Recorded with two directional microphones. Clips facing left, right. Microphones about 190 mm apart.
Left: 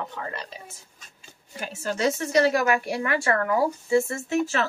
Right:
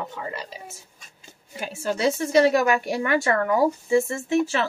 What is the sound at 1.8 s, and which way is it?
Speech, 15° right (ahead or behind).